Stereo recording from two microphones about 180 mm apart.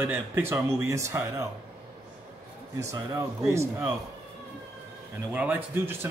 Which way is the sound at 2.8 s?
15° right (ahead or behind).